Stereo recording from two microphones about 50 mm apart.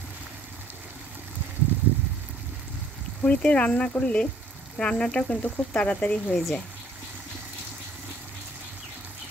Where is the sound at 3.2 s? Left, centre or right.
Left.